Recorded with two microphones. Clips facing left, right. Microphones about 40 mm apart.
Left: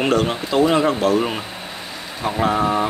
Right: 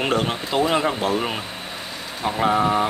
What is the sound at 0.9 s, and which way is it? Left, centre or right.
Speech, centre.